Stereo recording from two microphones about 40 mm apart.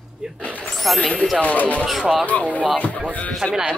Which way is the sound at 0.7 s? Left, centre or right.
Centre.